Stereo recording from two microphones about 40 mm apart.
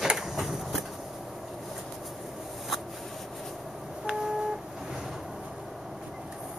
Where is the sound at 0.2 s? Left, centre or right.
Centre.